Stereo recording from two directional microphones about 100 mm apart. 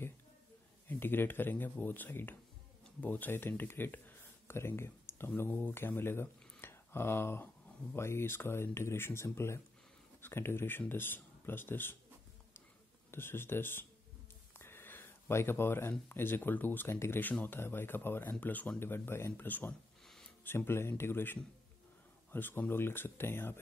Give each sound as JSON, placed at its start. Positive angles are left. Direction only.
{"t": 0.8, "sound": "speech", "side_deg": 20}
{"t": 13.1, "sound": "speech", "side_deg": 25}